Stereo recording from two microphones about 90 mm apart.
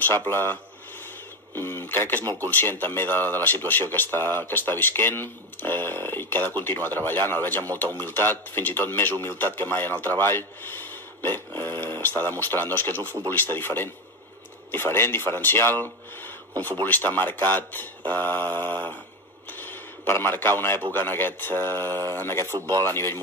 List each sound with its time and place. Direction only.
0.3 s speech: 25° left (ahead or behind)
19.5 s a sound: 20° left (ahead or behind)
20.9 s speech: 25° left (ahead or behind)